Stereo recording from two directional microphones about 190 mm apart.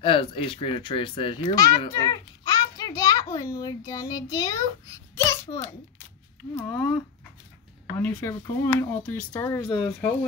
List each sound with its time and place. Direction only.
0.0 s a child's voice: 25° left (ahead or behind)
6.5 s speech: 5° left (ahead or behind)
8.0 s speech: 10° left (ahead or behind)